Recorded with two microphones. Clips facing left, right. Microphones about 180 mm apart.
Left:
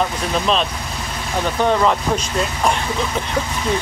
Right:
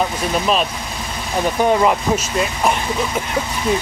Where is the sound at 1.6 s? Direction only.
10° right (ahead or behind).